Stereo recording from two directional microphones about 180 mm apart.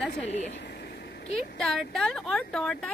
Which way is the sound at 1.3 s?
5° left (ahead or behind).